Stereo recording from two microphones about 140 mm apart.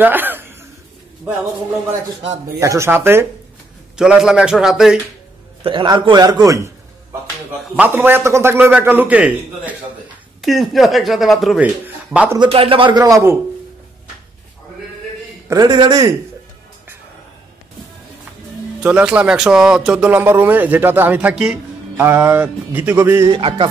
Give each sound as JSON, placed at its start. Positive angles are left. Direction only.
{"t": 0.0, "sound": "chuckle", "side_deg": -15}
{"t": 2.6, "sound": "speech", "side_deg": -20}
{"t": 3.9, "sound": "speech", "side_deg": -5}
{"t": 5.6, "sound": "a man's voice", "side_deg": -35}
{"t": 7.7, "sound": "speech", "side_deg": -15}
{"t": 12.4, "sound": "a man's voice", "side_deg": -40}
{"t": 15.4, "sound": "a man's voice", "side_deg": -25}
{"t": 18.8, "sound": "speech", "side_deg": -10}
{"t": 23.2, "sound": "a man's voice", "side_deg": -40}